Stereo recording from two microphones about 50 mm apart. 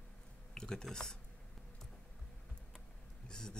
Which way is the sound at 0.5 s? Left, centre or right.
Centre.